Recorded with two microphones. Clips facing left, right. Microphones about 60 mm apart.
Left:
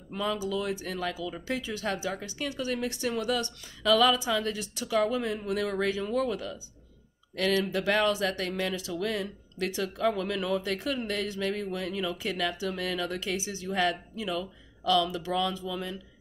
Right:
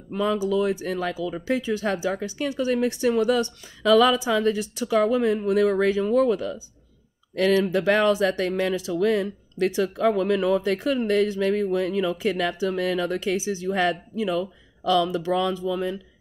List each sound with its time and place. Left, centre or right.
0.1 s speech: right